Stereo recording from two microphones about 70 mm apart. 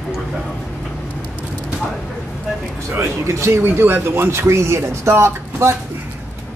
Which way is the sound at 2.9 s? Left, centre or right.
Right.